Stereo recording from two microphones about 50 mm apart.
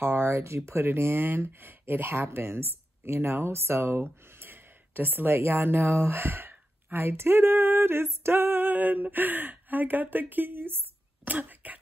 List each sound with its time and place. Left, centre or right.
0.0 s speech: right
0.7 s a woman's voice: right